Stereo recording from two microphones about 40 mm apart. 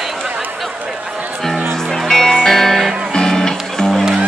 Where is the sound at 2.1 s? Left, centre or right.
Centre.